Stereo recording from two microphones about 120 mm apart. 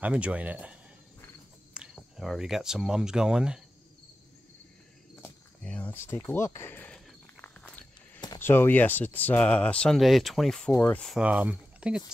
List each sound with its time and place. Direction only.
0.0 s speech: 10° right (ahead or behind)
5.2 s speech: 10° left (ahead or behind)
7.4 s walk: 15° left (ahead or behind)
8.4 s speech: 20° left (ahead or behind)
11.1 s speech: 10° right (ahead or behind)